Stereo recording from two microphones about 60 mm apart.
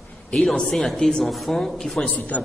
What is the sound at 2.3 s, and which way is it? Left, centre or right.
Speech, left.